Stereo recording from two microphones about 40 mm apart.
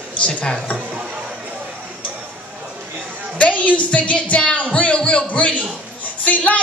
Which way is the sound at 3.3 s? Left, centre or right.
Left.